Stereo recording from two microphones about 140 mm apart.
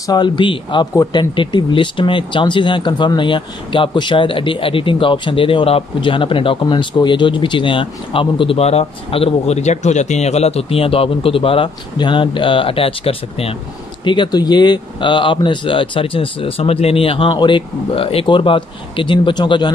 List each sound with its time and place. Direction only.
0.0 s speech: 30° left (ahead or behind)